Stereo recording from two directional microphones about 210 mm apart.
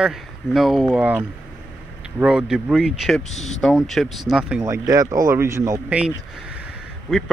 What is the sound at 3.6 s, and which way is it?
Speech, centre (ahead or behind).